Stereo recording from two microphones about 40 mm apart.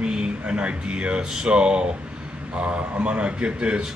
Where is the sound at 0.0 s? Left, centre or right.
Right.